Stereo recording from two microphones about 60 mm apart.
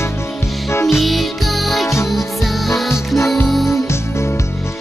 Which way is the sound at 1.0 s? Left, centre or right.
Centre.